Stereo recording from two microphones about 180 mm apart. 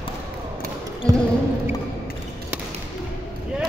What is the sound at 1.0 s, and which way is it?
Basketball bounce, 5° left (ahead or behind).